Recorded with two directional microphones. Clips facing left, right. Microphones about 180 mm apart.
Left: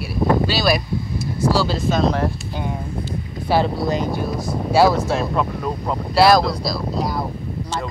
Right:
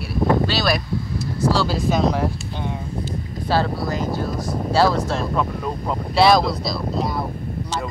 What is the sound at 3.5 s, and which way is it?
Speech, 20° left (ahead or behind).